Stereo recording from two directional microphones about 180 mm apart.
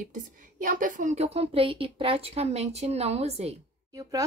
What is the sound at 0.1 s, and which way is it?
A woman's voice, 50° right (ahead or behind).